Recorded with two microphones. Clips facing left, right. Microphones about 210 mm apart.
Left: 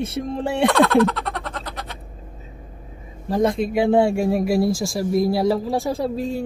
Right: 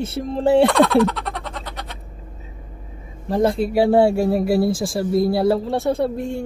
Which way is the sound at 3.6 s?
5° right (ahead or behind).